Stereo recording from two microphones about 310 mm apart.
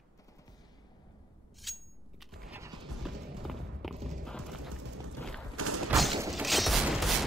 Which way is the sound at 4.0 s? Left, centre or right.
Right.